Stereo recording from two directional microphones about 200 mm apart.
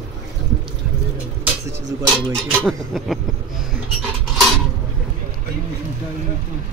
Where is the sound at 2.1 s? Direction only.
Centre (ahead or behind).